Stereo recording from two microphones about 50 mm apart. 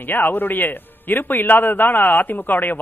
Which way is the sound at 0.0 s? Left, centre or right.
Left.